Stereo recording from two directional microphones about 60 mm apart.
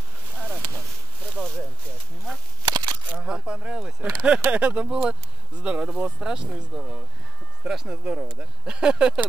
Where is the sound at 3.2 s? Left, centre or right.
Centre.